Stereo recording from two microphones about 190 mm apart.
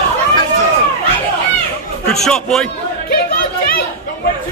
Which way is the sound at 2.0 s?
Centre (ahead or behind).